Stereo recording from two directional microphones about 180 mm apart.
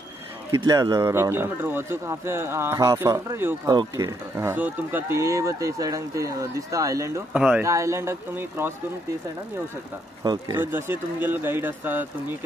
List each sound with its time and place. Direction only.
0.5 s speech: 20° right (ahead or behind)
7.3 s speech: 5° right (ahead or behind)
7.6 s speech: 15° right (ahead or behind)
10.2 s speech: 25° right (ahead or behind)
10.6 s speech: 10° right (ahead or behind)